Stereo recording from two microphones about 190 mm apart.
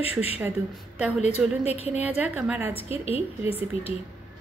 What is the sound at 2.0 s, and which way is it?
Speech, 10° right (ahead or behind).